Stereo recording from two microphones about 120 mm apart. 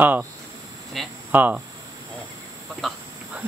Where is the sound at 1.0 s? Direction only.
Centre (ahead or behind).